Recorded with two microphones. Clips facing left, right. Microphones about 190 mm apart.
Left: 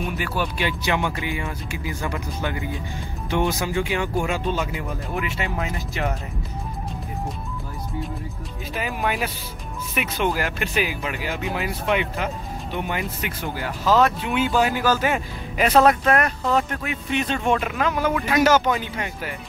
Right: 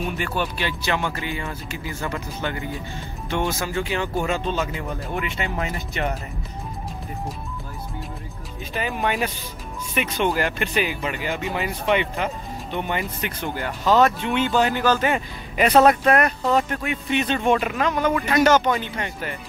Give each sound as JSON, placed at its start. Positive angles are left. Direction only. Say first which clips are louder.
{"t": 0.0, "sound": "speech", "louder": "even", "side_deg": 5}
{"t": 8.7, "sound": "speech", "louder": "right 1 dB", "side_deg": 5}